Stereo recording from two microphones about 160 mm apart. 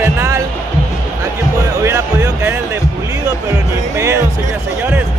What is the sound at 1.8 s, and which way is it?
Music, 15° right (ahead or behind).